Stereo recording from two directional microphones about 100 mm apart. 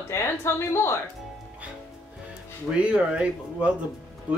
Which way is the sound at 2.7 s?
10° right (ahead or behind).